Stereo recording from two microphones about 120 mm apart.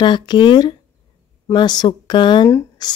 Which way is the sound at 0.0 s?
40° left (ahead or behind).